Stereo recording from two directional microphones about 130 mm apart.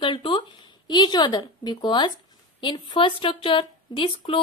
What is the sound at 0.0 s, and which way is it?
Speech, 40° left (ahead or behind).